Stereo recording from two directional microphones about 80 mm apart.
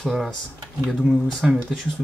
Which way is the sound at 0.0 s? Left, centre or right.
Centre.